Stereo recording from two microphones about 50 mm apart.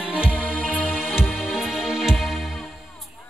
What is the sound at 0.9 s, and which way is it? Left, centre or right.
Music, centre.